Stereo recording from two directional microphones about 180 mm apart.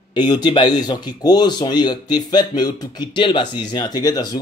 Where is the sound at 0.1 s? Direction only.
25° left (ahead or behind).